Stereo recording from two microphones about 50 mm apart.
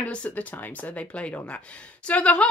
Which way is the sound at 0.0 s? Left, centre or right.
Left.